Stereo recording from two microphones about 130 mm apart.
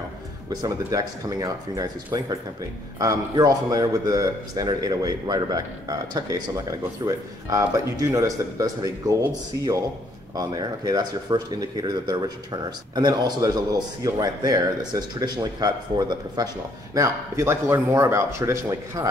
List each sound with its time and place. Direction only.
0.5 s a man's voice: 30° right (ahead or behind)
10.3 s a man's voice: 30° right (ahead or behind)